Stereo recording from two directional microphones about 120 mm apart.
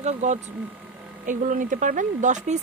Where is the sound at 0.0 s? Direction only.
75° right (ahead or behind).